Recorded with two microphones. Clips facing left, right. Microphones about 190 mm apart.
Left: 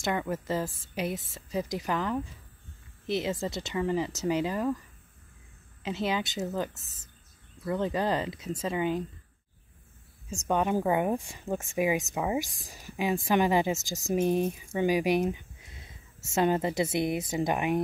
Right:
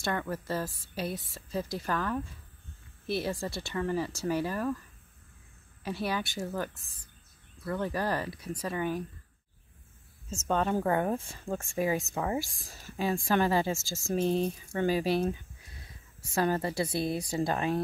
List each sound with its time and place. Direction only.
0.0 s speech: 15° left (ahead or behind)
5.8 s speech: 20° left (ahead or behind)
10.3 s speech: 15° left (ahead or behind)